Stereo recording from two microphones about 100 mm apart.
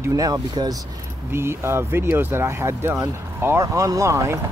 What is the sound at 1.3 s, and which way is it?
Speech, 25° right (ahead or behind).